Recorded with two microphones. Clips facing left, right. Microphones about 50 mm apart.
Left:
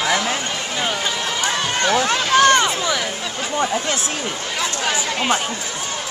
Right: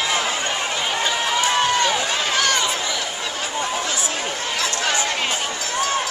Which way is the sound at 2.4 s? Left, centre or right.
Left.